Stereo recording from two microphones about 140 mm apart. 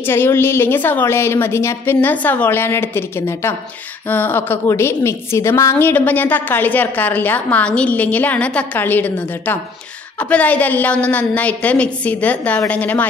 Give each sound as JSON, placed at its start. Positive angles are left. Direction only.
{"t": 0.0, "sound": "a woman's voice", "side_deg": 15}